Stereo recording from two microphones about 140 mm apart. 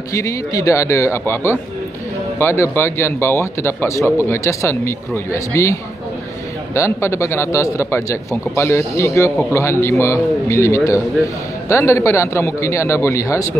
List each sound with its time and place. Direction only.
0.1 s a man's voice: 20° left (ahead or behind)